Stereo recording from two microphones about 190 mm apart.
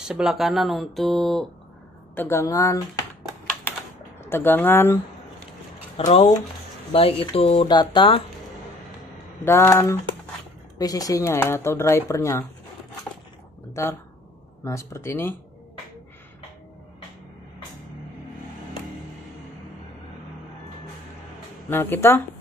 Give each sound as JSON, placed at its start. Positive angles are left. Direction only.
{"t": 0.0, "sound": "speech", "side_deg": 0}
{"t": 2.1, "sound": "speech", "side_deg": 15}
{"t": 4.2, "sound": "speech", "side_deg": 10}
{"t": 5.9, "sound": "speech", "side_deg": 35}
{"t": 9.4, "sound": "speech", "side_deg": 15}
{"t": 13.8, "sound": "speech", "side_deg": 15}
{"t": 21.6, "sound": "speech", "side_deg": 10}